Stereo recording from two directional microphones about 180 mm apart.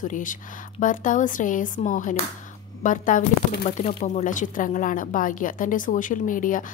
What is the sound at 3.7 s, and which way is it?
Speech, 40° left (ahead or behind).